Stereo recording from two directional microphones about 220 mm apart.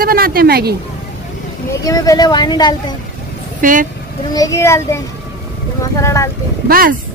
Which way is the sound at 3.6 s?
35° right (ahead or behind).